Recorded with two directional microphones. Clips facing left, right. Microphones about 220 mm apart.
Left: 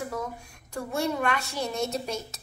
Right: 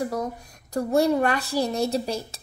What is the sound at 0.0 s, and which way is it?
A woman's voice, 40° right (ahead or behind).